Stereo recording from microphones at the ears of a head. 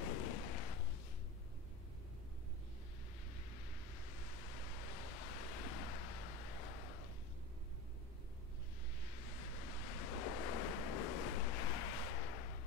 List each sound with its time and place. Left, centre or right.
0.0 s a sound: left
3.9 s waves: left
9.0 s waves: left